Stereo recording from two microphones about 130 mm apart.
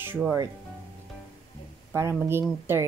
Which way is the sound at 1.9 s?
20° right (ahead or behind).